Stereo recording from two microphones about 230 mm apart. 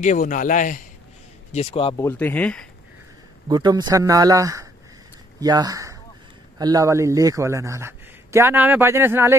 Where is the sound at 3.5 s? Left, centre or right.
Centre.